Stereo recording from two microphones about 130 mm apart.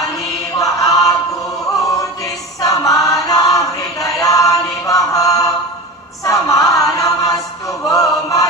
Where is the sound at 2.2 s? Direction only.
25° left (ahead or behind).